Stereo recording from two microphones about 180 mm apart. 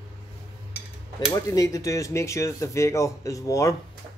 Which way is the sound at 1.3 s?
20° left (ahead or behind).